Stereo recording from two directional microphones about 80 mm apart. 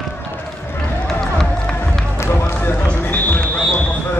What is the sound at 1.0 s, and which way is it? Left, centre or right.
Run, centre.